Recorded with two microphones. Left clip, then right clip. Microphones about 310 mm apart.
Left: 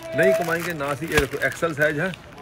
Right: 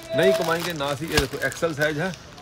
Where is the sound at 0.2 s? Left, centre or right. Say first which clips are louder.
Left 1 dB; centre.